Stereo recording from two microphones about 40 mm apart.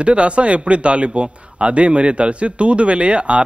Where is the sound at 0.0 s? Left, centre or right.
Right.